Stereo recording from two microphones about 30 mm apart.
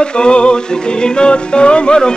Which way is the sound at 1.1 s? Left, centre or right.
Left.